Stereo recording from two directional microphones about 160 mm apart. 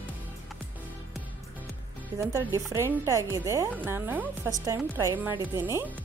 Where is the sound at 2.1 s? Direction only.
15° right (ahead or behind).